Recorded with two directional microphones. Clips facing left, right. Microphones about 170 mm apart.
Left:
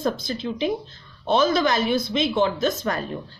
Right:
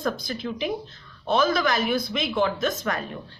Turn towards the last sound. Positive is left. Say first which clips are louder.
# left 3 dB
turn(degrees=30)  # may be behind; listen again after turning